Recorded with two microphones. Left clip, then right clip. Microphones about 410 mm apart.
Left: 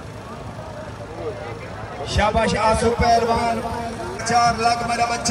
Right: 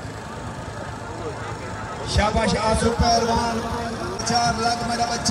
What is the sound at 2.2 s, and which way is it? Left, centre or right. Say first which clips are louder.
Speech: left 3 dB; centre.